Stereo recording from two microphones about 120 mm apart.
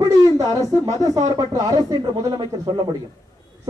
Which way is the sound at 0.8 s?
30° right (ahead or behind).